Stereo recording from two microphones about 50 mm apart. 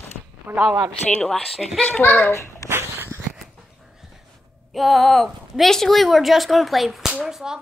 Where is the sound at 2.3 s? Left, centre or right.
Left.